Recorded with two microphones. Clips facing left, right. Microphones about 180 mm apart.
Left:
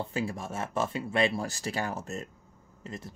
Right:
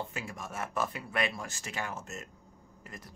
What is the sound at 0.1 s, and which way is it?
Speech, 30° left (ahead or behind).